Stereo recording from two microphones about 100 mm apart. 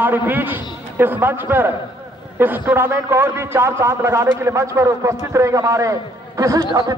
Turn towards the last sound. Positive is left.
turn(degrees=-40)  # may be behind; listen again after turning